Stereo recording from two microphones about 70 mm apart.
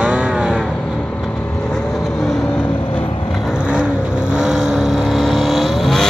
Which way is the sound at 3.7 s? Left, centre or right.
Centre.